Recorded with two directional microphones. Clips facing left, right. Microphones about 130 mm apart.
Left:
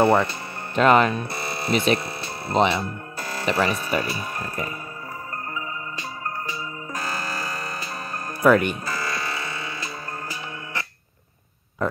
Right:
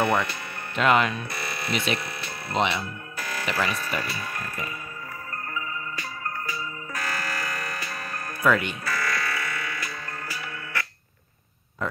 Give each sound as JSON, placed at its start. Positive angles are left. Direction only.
{"t": 0.0, "sound": "speech", "side_deg": 30}
{"t": 6.9, "sound": "music", "side_deg": 25}
{"t": 8.8, "sound": "music", "side_deg": 25}